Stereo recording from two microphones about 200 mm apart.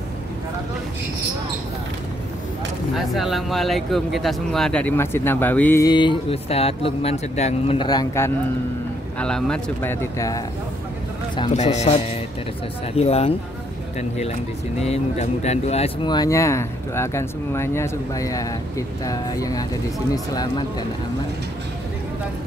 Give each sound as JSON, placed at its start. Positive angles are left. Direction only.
{"t": 3.0, "sound": "speech", "side_deg": 0}
{"t": 9.2, "sound": "speech", "side_deg": 5}
{"t": 10.1, "sound": "speech", "side_deg": 15}
{"t": 11.5, "sound": "a man's voice", "side_deg": 35}